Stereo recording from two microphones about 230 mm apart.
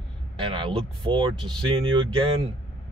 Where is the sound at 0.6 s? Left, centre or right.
Right.